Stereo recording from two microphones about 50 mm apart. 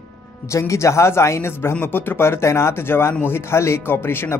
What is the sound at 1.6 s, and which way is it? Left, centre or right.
Speech, left.